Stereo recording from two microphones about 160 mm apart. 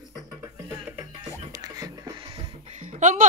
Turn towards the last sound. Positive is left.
turn(degrees=-50)  # may be behind; listen again after turning